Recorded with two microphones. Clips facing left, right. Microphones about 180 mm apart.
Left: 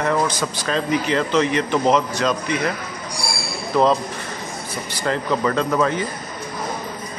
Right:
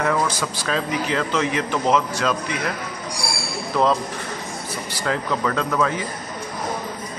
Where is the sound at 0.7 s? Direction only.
Centre (ahead or behind).